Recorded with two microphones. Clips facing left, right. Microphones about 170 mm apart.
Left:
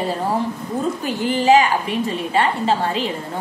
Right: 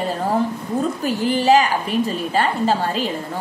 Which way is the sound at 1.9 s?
40° right (ahead or behind).